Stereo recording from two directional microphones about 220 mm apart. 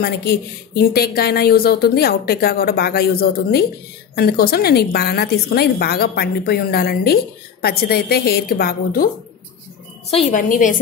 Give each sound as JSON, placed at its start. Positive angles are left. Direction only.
{"t": 0.0, "sound": "a woman's voice", "side_deg": 45}
{"t": 10.1, "sound": "a woman's voice", "side_deg": 35}